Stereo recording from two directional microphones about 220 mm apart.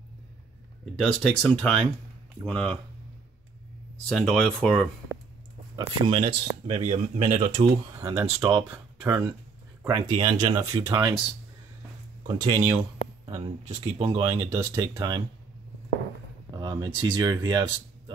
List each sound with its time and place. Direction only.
0.9 s speech: centre (ahead or behind)
4.1 s speech: centre (ahead or behind)
5.8 s speech: 25° right (ahead or behind)
7.9 s speech: 10° right (ahead or behind)
10.1 s speech: 20° right (ahead or behind)
12.3 s speech: 20° right (ahead or behind)
14.2 s speech: 15° right (ahead or behind)
16.5 s speech: 20° right (ahead or behind)